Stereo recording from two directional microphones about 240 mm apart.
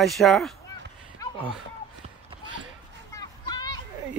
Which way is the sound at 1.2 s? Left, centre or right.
Centre.